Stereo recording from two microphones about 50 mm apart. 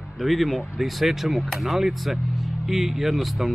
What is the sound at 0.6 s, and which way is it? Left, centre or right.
Speech, centre.